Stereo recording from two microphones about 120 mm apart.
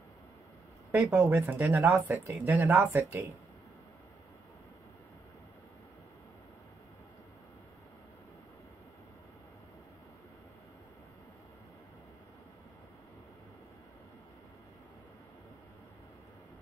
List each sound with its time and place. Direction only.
1.1 s speech: 15° right (ahead or behind)